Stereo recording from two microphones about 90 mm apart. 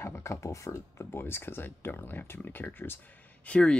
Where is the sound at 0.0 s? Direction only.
30° left (ahead or behind).